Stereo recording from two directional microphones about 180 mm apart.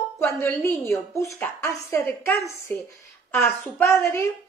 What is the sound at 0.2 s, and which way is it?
A woman's voice, 15° left (ahead or behind).